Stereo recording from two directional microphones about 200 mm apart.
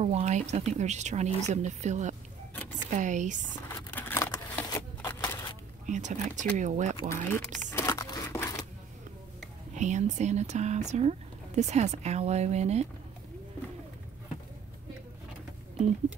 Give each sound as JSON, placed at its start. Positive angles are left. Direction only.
{"t": 0.0, "sound": "speech", "side_deg": -35}
{"t": 3.9, "sound": "a sound", "side_deg": 15}
{"t": 5.9, "sound": "speech", "side_deg": -35}
{"t": 7.1, "sound": "crumpling", "side_deg": 15}
{"t": 9.8, "sound": "speech", "side_deg": -35}